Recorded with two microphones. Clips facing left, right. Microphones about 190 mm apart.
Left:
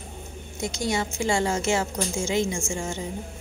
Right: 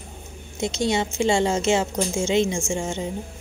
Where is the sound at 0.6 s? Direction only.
25° right (ahead or behind).